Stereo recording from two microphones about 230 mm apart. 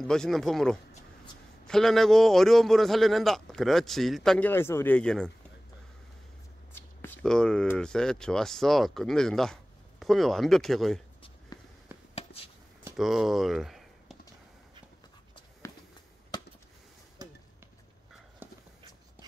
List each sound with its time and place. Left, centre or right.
0.0 s a man's voice: centre
6.7 s speech: centre
11.9 s a sound: centre
18.4 s walk: centre